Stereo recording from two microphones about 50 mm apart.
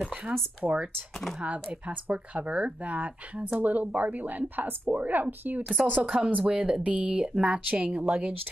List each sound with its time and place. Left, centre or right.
0.0 s speech: right
1.4 s a woman's voice: right